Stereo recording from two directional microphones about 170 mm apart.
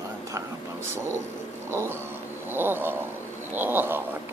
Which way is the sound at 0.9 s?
15° right (ahead or behind).